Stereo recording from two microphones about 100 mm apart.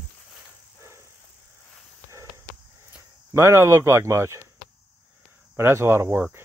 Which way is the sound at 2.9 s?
30° right (ahead or behind).